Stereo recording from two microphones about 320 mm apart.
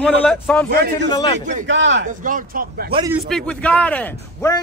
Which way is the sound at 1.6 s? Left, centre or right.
Right.